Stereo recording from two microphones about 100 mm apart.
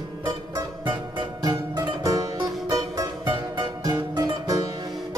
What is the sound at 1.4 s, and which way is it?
Music, 40° right (ahead or behind).